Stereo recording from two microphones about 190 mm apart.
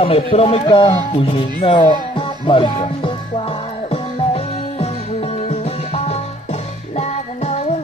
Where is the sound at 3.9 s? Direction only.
30° left (ahead or behind).